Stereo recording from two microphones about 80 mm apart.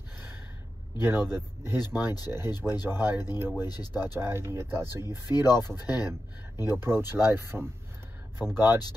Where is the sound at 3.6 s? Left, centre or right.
Left.